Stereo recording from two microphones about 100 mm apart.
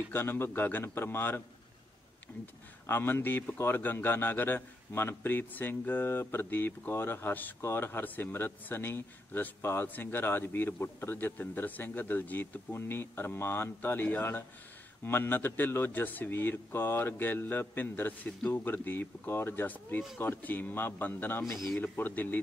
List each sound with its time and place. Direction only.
0.1 s a man's voice: 25° left (ahead or behind)
2.9 s a man's voice: 20° left (ahead or behind)
21.5 s speech: centre (ahead or behind)
21.7 s speech: 20° left (ahead or behind)